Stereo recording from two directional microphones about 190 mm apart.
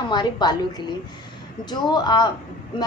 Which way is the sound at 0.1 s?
20° left (ahead or behind).